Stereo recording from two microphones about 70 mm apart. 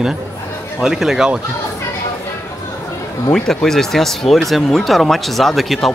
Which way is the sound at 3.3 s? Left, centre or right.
Centre.